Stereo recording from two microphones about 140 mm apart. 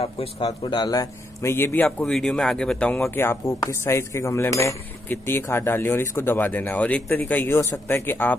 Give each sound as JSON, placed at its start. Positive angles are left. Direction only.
{"t": 0.0, "sound": "cutlery", "side_deg": 45}
{"t": 3.0, "sound": "cutlery", "side_deg": 15}